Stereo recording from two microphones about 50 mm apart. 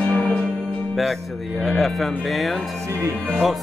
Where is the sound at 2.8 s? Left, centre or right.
Right.